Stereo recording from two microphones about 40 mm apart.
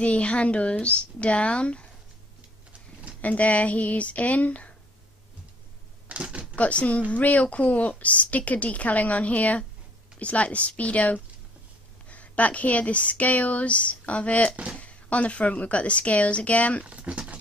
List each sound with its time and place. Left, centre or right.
0.0 s speech: left
3.2 s speech: left
6.1 s typewriter: right
6.5 s speech: left
16.8 s speech: right